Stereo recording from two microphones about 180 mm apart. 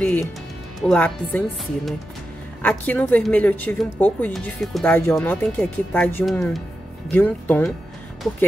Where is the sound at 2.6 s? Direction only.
10° left (ahead or behind).